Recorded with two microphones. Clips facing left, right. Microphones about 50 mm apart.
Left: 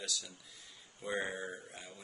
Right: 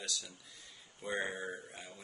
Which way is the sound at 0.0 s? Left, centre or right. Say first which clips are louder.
Even; centre.